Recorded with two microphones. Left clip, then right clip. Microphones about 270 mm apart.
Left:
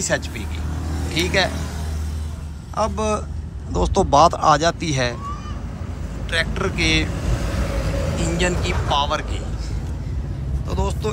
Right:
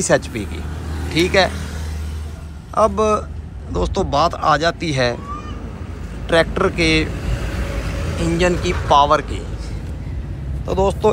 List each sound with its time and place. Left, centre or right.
0.0 s speech: centre
2.7 s speech: centre
6.2 s speech: centre
7.8 s vehicle: left
8.2 s speech: centre
10.7 s speech: centre